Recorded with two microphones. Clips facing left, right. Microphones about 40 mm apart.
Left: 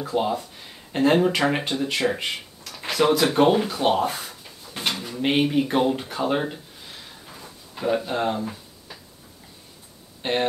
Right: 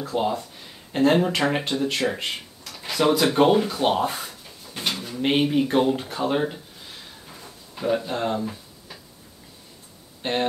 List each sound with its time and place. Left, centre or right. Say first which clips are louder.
0.0 s speech: left 1 dB; centre
4.7 s bird: left 1 dB; left
5.0 s speech: even; centre
7.2 s a sound: left 1 dB; centre
10.2 s speech: left 1 dB; centre